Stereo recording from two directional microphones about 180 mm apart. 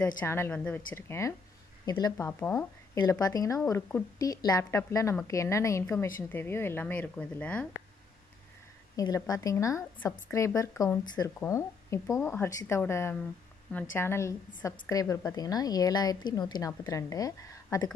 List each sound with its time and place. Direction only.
0.2 s a woman's voice: 10° left (ahead or behind)
8.9 s a woman's voice: 20° left (ahead or behind)